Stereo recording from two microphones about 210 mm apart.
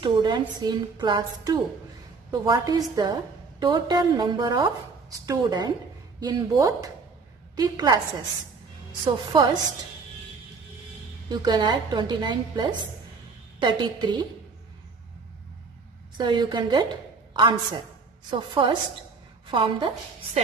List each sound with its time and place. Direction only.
0.0 s a woman's voice: 20° right (ahead or behind)
9.0 s a woman's voice: 20° right (ahead or behind)
11.2 s a woman's voice: 20° right (ahead or behind)
16.2 s a woman's voice: 20° right (ahead or behind)